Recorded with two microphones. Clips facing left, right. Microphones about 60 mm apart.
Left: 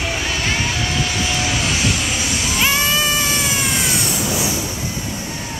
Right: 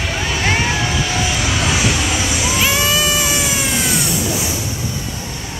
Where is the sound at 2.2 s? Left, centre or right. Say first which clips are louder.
Right 3 dB; centre.